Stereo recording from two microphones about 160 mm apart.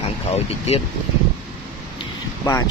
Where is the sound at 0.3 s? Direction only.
40° left (ahead or behind).